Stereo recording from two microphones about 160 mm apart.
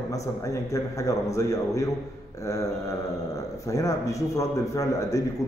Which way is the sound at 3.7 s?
20° left (ahead or behind).